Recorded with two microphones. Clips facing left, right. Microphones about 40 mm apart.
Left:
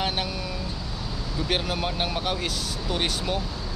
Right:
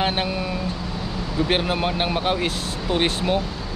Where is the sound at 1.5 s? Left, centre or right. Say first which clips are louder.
Right 4 dB; right.